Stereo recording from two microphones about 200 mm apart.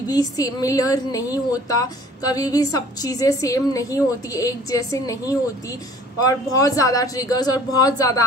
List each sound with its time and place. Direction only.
0.1 s a woman's voice: 20° left (ahead or behind)